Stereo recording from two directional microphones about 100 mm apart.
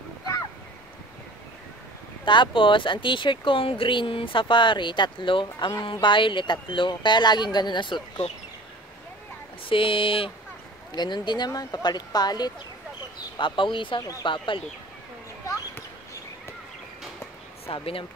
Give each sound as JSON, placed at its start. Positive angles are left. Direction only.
{"t": 2.2, "sound": "speech", "side_deg": 55}
{"t": 9.7, "sound": "speech", "side_deg": 60}
{"t": 11.0, "sound": "speech", "side_deg": 45}
{"t": 13.4, "sound": "speech", "side_deg": 55}
{"t": 17.7, "sound": "speech", "side_deg": 70}